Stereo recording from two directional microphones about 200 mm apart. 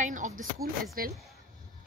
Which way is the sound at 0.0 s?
40° right (ahead or behind).